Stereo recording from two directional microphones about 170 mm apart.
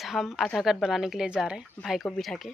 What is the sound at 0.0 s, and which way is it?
Speech, centre (ahead or behind).